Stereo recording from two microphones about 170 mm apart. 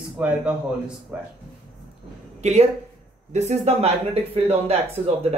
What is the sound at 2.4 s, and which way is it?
Speech, 40° right (ahead or behind).